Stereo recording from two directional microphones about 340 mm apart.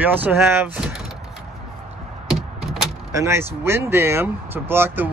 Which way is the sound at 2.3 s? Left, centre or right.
Centre.